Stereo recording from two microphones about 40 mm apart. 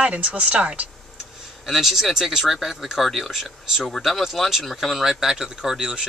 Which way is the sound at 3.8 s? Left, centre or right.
Centre.